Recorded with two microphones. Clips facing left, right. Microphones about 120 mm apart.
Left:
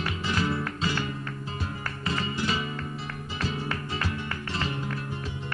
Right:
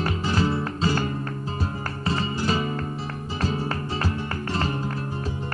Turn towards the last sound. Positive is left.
turn(degrees=-40)  # may be behind; listen again after turning